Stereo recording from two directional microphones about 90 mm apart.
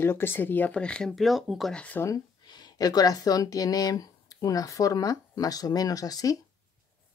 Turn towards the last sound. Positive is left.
turn(degrees=40)  # may be behind; listen again after turning